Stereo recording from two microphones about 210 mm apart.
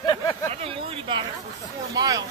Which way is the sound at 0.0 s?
20° left (ahead or behind).